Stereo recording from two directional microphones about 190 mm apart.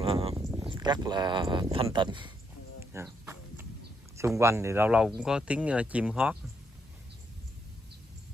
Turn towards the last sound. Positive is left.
turn(degrees=-5)  # may be behind; listen again after turning